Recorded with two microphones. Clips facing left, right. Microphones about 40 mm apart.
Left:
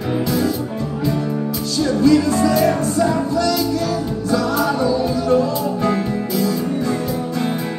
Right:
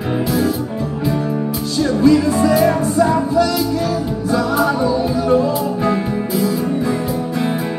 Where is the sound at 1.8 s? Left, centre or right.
Centre.